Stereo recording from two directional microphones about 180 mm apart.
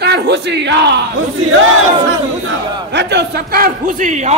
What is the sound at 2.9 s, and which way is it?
A man's voice, 70° right (ahead or behind).